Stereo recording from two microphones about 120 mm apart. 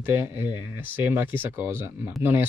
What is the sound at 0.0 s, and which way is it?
Speech, 20° right (ahead or behind).